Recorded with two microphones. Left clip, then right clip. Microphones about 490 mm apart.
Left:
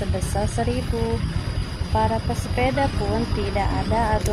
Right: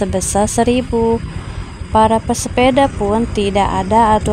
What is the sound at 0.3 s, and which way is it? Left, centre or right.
Speech, left.